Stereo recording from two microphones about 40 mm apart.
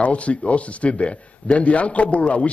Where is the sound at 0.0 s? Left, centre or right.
Left.